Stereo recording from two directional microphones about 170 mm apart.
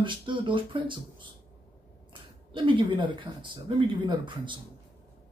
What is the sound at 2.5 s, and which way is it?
Speech, 30° right (ahead or behind).